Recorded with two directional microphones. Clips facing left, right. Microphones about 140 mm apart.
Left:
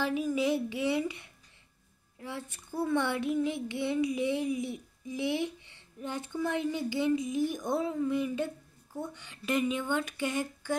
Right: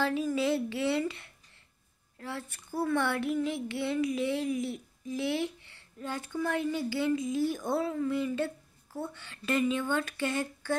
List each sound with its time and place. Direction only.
0.0 s a woman's voice: 15° left (ahead or behind)